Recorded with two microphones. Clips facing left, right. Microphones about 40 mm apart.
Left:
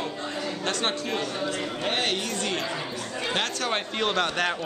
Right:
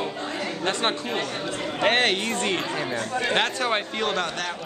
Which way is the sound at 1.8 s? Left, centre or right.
Right.